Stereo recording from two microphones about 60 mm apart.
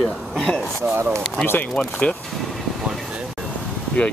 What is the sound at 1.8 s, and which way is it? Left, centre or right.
Speech, centre.